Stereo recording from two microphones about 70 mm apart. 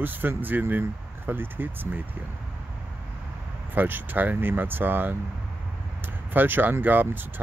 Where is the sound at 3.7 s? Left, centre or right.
Right.